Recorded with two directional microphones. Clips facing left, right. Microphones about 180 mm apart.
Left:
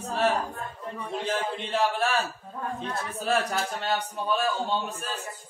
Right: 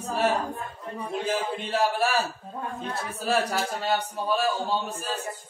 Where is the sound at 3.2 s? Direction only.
5° right (ahead or behind).